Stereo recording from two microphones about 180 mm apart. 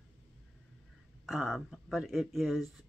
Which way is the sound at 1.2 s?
Centre (ahead or behind).